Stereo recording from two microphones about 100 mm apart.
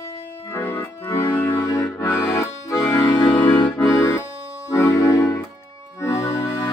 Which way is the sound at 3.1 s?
55° left (ahead or behind).